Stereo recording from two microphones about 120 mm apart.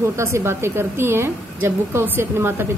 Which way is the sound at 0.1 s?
25° right (ahead or behind).